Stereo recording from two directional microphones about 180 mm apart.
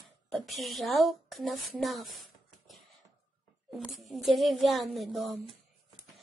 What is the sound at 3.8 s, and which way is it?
A woman's voice, centre (ahead or behind).